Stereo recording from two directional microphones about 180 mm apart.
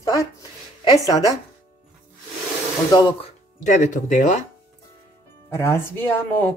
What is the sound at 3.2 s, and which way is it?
Speech, 45° left (ahead or behind).